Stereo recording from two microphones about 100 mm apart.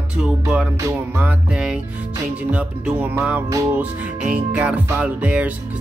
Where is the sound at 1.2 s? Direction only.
5° right (ahead or behind).